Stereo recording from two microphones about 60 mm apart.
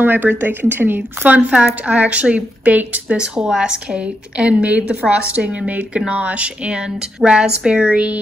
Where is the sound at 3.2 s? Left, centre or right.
Centre.